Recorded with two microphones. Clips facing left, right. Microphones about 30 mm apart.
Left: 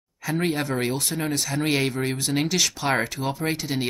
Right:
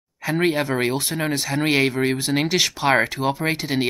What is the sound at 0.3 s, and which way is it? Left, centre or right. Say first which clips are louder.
Speech: right 4 dB; centre.